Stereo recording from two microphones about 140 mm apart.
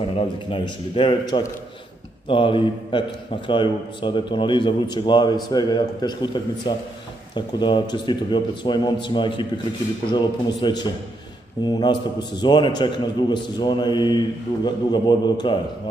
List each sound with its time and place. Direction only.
0.0 s a man's voice: 40° left (ahead or behind)